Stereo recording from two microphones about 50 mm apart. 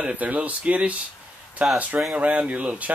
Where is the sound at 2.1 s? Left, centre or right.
Right.